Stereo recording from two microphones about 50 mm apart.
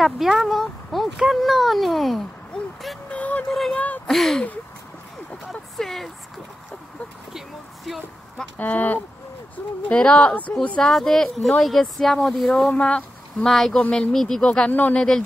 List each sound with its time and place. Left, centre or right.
0.0 s speech: centre
3.1 s speech: left
4.1 s speech: centre
5.5 s a sound: centre
7.3 s speech: centre
8.5 s speech: left
9.8 s speech: left
10.8 s speech: centre
12.7 s speech: centre
13.5 s speech: centre
13.7 s speech: left
14.1 s speech: centre
14.7 s speech: left
15.0 s speech: centre